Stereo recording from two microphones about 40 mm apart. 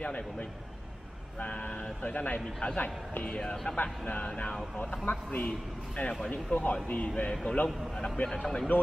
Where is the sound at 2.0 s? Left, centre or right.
Left.